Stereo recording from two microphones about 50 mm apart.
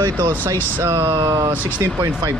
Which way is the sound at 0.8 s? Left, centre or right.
Right.